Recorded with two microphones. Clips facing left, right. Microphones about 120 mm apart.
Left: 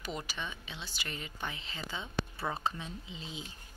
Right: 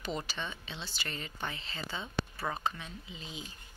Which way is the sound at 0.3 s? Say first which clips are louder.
Right 1 dB; 10° left (ahead or behind).